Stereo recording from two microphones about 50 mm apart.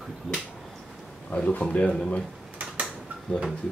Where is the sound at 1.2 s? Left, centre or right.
Left.